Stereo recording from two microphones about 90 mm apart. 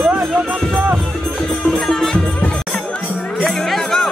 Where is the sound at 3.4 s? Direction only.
Centre (ahead or behind).